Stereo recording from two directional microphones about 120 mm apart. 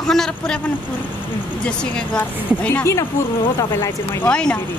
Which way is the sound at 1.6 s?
10° left (ahead or behind).